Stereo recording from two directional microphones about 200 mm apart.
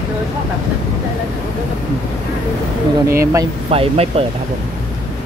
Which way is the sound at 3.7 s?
30° right (ahead or behind).